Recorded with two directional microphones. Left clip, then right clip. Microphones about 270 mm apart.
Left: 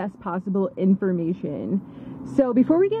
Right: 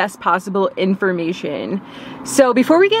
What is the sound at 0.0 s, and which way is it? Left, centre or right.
Speech, centre.